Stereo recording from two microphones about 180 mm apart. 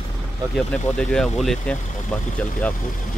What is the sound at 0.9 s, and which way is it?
Speech, 5° left (ahead or behind).